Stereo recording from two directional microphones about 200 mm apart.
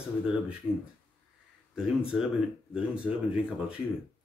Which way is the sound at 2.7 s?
5° right (ahead or behind).